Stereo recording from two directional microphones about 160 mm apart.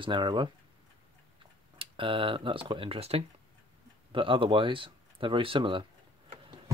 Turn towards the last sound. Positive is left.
turn(degrees=-30)  # may be behind; listen again after turning